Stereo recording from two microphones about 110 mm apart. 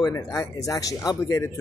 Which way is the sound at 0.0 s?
30° left (ahead or behind).